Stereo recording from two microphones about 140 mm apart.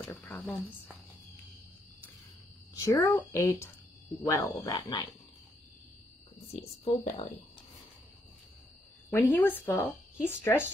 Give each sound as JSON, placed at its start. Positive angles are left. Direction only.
{"t": 0.2, "sound": "speech", "side_deg": 15}
{"t": 2.7, "sound": "speech", "side_deg": 25}
{"t": 4.7, "sound": "wild animals", "side_deg": 30}
{"t": 6.5, "sound": "speech", "side_deg": 45}
{"t": 9.1, "sound": "speech", "side_deg": 15}